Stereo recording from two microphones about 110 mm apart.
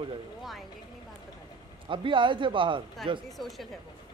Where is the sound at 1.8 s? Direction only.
50° right (ahead or behind).